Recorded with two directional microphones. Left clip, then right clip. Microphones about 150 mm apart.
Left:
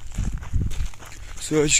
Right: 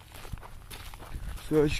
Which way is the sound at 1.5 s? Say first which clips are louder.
Left 5 dB; 10° left (ahead or behind).